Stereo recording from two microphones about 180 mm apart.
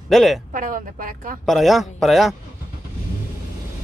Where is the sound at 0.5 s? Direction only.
45° right (ahead or behind).